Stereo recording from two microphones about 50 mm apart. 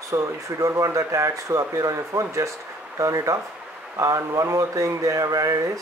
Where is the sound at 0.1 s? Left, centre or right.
Right.